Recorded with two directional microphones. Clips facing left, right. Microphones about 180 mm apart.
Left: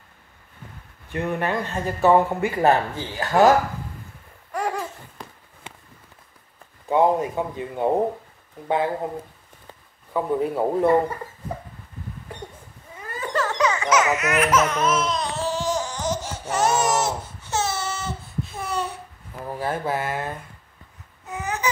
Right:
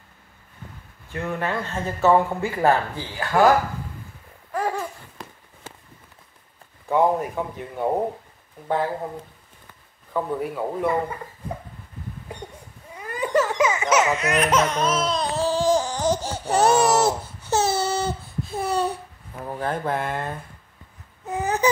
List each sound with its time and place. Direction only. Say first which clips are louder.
1.1 s speech: left 2 dB; 15° left (ahead or behind)
4.5 s laughter: right 1 dB; centre (ahead or behind)
6.9 s speech: left 1 dB; 20° left (ahead or behind)
10.4 s speech: left 5 dB; 25° left (ahead or behind)
13.0 s baby laughter: right 4 dB; 15° right (ahead or behind)
14.4 s laughter: left 1 dB; 30° right (ahead or behind)
19.4 s speech: even; 5° left (ahead or behind)
21.3 s baby cry: right 5 dB; 35° right (ahead or behind)